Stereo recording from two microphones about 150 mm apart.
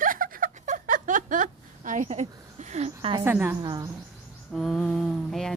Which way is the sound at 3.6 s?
25° right (ahead or behind).